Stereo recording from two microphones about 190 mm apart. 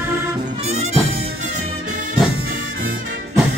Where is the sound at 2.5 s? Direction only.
45° right (ahead or behind).